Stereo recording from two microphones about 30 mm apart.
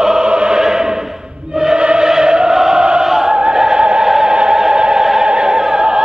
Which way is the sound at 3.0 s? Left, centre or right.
Centre.